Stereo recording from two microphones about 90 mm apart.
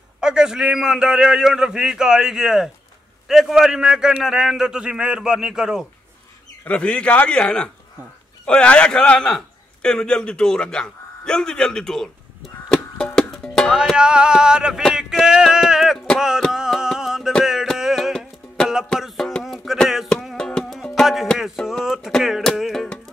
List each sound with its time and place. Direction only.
0.2 s a man's voice: 5° right (ahead or behind)
6.6 s a man's voice: 10° left (ahead or behind)
12.6 s music: 10° left (ahead or behind)
13.7 s a man's voice: 10° right (ahead or behind)
16.2 s a sound: 5° right (ahead or behind)
16.5 s music: 5° right (ahead or behind)